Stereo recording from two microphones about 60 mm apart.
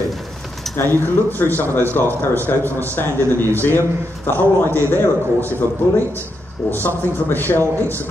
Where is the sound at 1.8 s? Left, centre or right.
Left.